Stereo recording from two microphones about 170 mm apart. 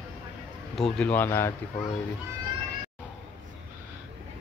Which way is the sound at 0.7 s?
5° left (ahead or behind).